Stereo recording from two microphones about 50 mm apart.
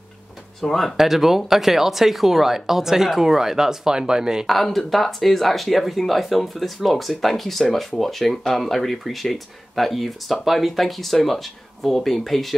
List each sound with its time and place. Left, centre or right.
0.6 s speech: centre
0.9 s speech: centre
4.5 s speech: centre